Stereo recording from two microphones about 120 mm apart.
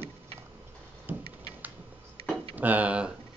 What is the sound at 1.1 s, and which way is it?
Speech, 15° right (ahead or behind).